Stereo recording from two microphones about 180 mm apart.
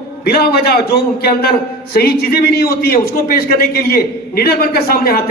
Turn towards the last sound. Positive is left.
turn(degrees=60)  # may be behind; listen again after turning